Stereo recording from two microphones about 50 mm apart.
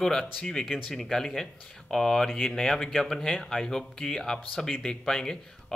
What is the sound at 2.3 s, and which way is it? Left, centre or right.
A man's voice, centre.